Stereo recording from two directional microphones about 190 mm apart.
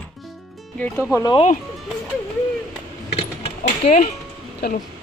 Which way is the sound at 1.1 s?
20° left (ahead or behind).